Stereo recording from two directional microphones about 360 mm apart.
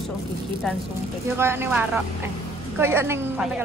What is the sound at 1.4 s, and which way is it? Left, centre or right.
A woman's voice, centre.